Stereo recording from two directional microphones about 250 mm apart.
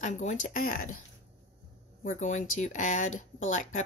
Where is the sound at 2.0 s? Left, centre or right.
Left.